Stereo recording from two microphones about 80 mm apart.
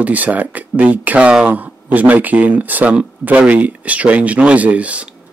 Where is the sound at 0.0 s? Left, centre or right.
Centre.